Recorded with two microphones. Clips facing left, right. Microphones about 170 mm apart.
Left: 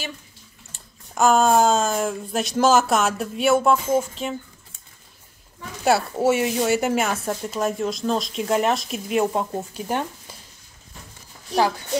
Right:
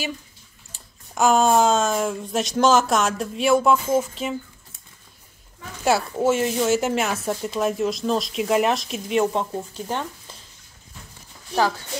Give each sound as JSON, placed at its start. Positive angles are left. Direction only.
{"t": 1.1, "sound": "speech", "side_deg": 0}
{"t": 5.9, "sound": "speech", "side_deg": 0}